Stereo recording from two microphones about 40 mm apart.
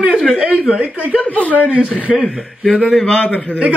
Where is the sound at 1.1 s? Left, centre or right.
Left.